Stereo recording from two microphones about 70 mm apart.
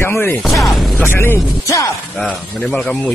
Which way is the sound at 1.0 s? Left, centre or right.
Left.